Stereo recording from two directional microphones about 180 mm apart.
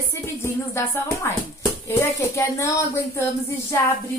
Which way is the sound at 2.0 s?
15° left (ahead or behind).